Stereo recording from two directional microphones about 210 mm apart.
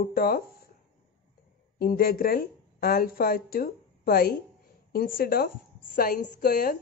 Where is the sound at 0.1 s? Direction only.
45° left (ahead or behind).